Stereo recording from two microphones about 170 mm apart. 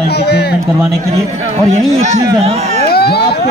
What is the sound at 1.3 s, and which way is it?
Speech, 45° right (ahead or behind).